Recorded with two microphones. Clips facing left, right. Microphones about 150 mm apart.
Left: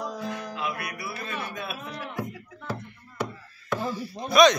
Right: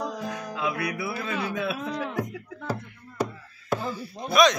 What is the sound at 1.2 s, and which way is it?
Speech, 90° right.